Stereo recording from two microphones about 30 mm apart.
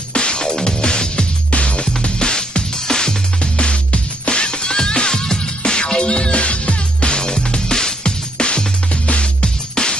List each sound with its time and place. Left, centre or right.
0.1 s music: left
3.5 s music: left
7.2 s music: left
8.0 s music: left